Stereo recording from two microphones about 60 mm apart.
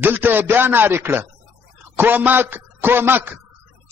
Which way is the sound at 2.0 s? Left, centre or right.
Right.